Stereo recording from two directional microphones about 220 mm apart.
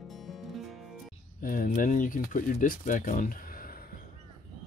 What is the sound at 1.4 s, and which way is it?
Speech, 40° left (ahead or behind).